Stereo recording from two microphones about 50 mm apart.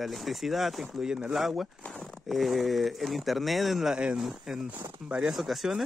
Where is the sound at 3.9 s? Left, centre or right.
Centre.